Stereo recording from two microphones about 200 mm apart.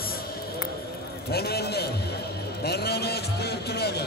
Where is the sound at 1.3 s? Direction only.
50° left (ahead or behind).